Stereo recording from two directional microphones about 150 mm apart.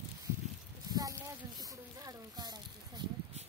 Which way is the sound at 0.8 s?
25° right (ahead or behind).